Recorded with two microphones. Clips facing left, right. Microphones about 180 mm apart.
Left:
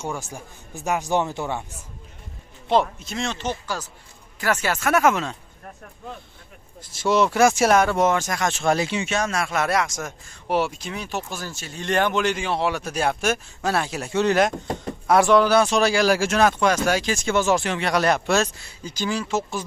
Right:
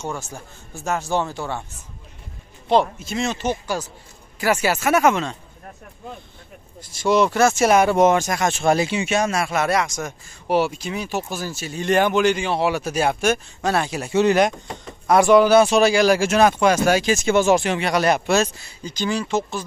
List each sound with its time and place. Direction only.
0.0 s a man's voice: 10° left (ahead or behind)
2.7 s speech: centre (ahead or behind)
7.0 s speech: 5° left (ahead or behind)
7.6 s speech: 10° right (ahead or behind)